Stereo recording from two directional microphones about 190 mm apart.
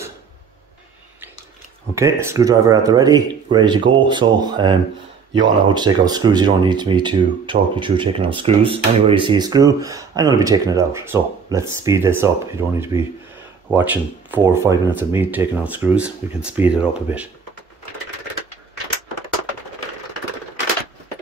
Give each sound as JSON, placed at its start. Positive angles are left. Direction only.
{"t": 2.0, "sound": "speech", "side_deg": -15}